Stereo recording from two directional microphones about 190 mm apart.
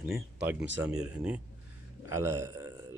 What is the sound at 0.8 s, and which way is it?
Speech, 5° right (ahead or behind).